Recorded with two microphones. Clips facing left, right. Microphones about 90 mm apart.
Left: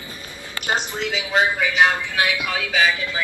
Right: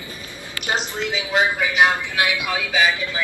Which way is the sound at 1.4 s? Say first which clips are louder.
Right 1 dB; 20° right (ahead or behind).